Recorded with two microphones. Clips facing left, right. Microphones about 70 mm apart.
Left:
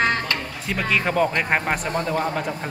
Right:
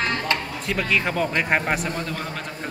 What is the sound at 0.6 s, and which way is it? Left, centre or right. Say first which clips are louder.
A man's voice: left 3 dB; centre.